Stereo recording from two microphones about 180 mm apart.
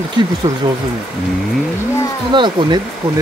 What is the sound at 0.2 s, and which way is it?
Speech, 25° right (ahead or behind).